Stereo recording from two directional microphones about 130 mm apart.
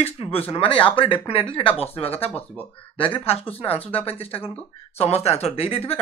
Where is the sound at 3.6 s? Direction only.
50° left (ahead or behind).